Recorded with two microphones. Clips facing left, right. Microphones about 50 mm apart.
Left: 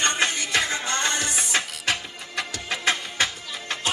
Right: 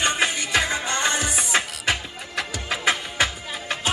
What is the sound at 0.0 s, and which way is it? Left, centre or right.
Music, centre.